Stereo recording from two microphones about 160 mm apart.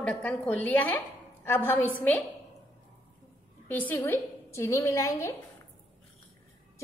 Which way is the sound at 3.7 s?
10° left (ahead or behind).